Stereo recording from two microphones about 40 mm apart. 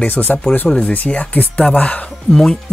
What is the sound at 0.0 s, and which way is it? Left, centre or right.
Speech, left.